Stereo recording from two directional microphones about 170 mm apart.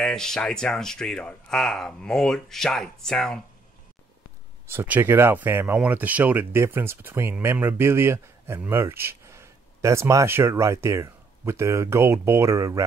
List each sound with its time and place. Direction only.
0.0 s speech: 5° left (ahead or behind)
4.6 s speech: 10° right (ahead or behind)